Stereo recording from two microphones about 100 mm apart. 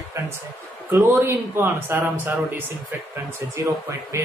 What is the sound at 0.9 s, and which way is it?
Speech, 25° right (ahead or behind).